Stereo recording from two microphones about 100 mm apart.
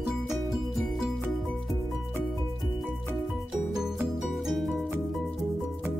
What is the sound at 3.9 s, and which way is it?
Music, 5° right (ahead or behind).